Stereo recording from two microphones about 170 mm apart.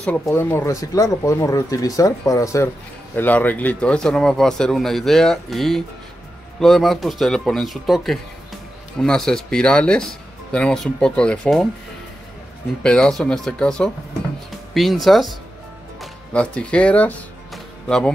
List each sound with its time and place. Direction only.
0.0 s speech: 10° left (ahead or behind)
12.8 s speech: 5° left (ahead or behind)